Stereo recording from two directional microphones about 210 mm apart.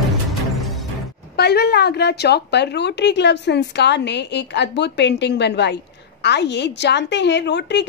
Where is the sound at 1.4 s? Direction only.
50° left (ahead or behind).